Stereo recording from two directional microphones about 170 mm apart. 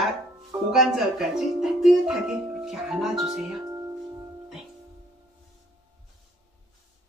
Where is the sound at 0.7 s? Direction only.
Centre (ahead or behind).